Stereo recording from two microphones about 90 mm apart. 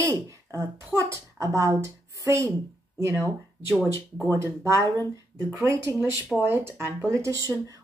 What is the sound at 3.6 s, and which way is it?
Speech, 30° right (ahead or behind).